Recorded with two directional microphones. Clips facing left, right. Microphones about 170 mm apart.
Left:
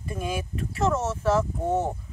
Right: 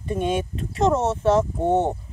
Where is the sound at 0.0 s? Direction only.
30° right (ahead or behind).